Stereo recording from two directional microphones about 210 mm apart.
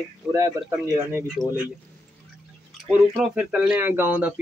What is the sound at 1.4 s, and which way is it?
Speech, centre (ahead or behind).